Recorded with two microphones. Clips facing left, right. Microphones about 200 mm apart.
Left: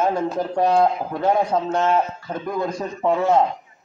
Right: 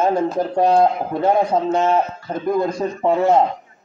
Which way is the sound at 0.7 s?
25° right (ahead or behind).